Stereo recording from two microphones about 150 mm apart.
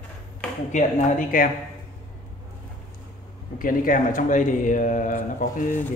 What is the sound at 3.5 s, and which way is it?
A man's voice, 65° left (ahead or behind).